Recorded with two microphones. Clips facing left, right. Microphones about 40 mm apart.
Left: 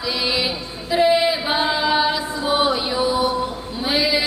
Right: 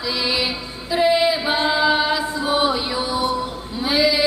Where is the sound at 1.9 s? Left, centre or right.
Centre.